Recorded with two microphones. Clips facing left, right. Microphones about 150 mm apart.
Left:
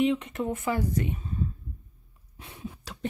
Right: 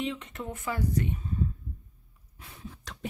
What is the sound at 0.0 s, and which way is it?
Speech, 15° left (ahead or behind).